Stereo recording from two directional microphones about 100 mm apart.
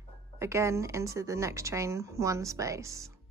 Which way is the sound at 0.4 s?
30° right (ahead or behind).